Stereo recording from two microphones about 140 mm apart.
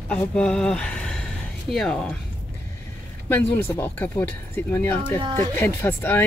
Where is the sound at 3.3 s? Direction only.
15° left (ahead or behind).